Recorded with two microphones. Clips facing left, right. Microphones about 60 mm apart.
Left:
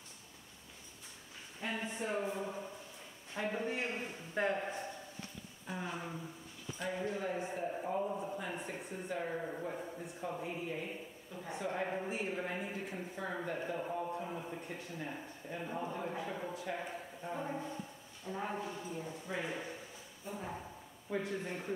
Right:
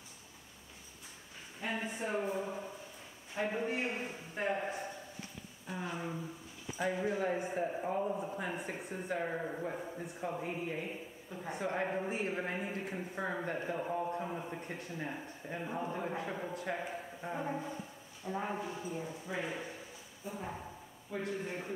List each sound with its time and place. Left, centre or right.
1.6 s a sound: centre
3.4 s a man's voice: centre
8.1 s speech: centre
9.1 s a man's voice: right
14.6 s a man's voice: centre
15.0 s a man's voice: centre